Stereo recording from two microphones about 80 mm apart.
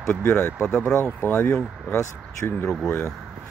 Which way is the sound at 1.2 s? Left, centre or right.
Left.